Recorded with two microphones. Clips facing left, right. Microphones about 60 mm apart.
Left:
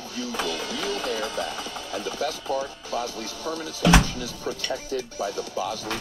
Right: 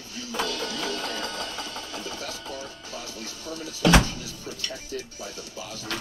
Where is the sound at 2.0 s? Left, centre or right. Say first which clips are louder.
Left 6 dB; left.